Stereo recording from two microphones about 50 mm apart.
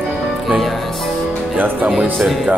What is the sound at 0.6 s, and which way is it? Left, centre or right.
Music, centre.